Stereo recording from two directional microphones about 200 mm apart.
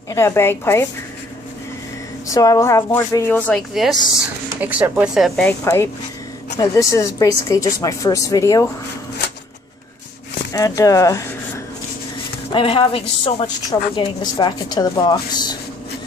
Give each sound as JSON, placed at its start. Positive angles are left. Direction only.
{"t": 0.1, "sound": "a woman's voice", "side_deg": 15}
{"t": 2.2, "sound": "a woman's voice", "side_deg": 15}
{"t": 10.5, "sound": "speech", "side_deg": 15}
{"t": 12.5, "sound": "a woman's voice", "side_deg": 30}